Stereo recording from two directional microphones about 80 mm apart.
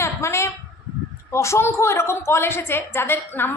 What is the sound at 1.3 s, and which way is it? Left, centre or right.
A woman's voice, left.